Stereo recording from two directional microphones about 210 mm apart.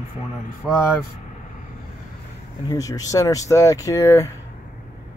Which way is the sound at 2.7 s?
15° left (ahead or behind).